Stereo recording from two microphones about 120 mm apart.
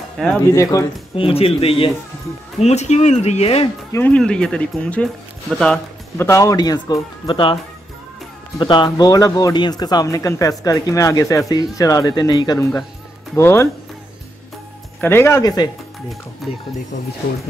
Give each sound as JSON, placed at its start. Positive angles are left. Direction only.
{"t": 0.2, "sound": "speech", "side_deg": 5}
{"t": 0.6, "sound": "speech", "side_deg": 30}
{"t": 1.1, "sound": "speech", "side_deg": 50}
{"t": 2.6, "sound": "speech", "side_deg": 70}
{"t": 3.9, "sound": "speech", "side_deg": 15}
{"t": 6.1, "sound": "speech", "side_deg": 25}
{"t": 7.2, "sound": "speech", "side_deg": 45}
{"t": 8.5, "sound": "speech", "side_deg": 40}
{"t": 13.3, "sound": "speech", "side_deg": 20}
{"t": 15.0, "sound": "speech", "side_deg": 20}
{"t": 16.4, "sound": "speech", "side_deg": 0}